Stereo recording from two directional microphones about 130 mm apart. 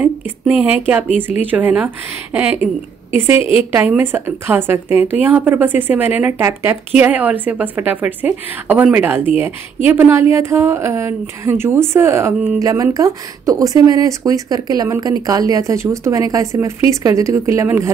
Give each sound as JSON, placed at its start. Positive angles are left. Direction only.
{"t": 0.0, "sound": "a woman's voice", "side_deg": -10}